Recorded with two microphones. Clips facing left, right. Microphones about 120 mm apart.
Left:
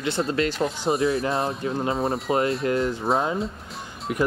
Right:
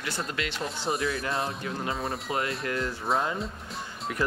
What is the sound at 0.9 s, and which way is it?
Speech, 25° left (ahead or behind).